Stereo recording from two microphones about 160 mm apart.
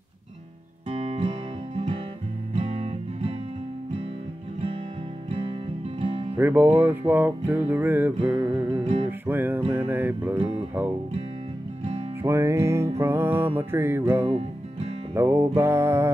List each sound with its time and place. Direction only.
0.8 s music: 40° right (ahead or behind)
2.5 s music: 40° right (ahead or behind)
5.3 s music: 35° right (ahead or behind)
6.3 s speech: 10° right (ahead or behind)
6.8 s music: 10° right (ahead or behind)
8.2 s music: 30° right (ahead or behind)
9.2 s music: 15° right (ahead or behind)
12.2 s music: 15° right (ahead or behind)